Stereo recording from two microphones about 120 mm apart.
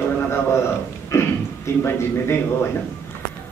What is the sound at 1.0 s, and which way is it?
A man's voice, 20° left (ahead or behind).